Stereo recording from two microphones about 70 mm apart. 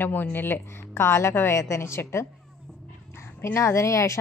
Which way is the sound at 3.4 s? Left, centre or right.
Left.